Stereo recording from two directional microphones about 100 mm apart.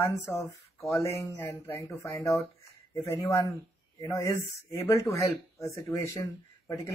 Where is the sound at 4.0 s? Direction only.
30° left (ahead or behind).